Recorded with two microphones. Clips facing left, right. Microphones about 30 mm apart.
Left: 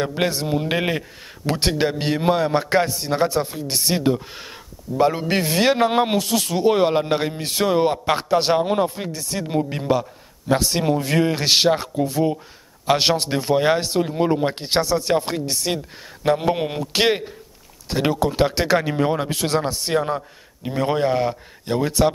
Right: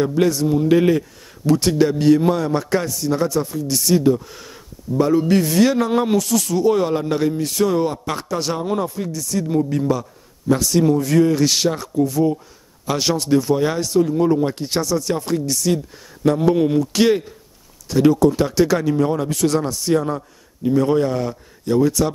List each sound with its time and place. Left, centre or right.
0.0 s a man's voice: left